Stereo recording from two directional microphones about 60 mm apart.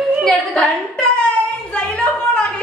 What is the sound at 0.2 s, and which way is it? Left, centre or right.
Speech, centre.